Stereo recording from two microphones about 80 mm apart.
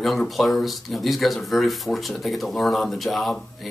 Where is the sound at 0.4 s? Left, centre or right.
Centre.